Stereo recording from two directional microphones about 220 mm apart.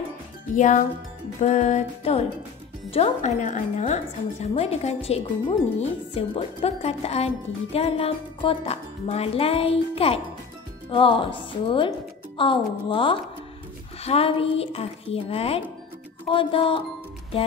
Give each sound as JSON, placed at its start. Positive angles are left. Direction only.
{"t": 0.6, "sound": "music", "side_deg": 35}
{"t": 2.9, "sound": "a woman's voice", "side_deg": 30}